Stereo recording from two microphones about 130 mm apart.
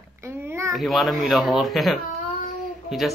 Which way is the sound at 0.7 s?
Centre (ahead or behind).